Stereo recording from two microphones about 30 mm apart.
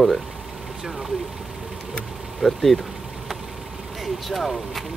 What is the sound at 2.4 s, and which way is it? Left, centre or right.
Speech, centre.